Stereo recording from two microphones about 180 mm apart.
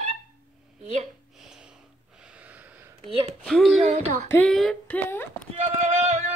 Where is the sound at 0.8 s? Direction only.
40° right (ahead or behind).